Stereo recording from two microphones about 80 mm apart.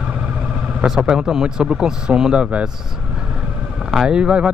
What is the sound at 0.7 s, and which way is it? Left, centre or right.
Speech, centre.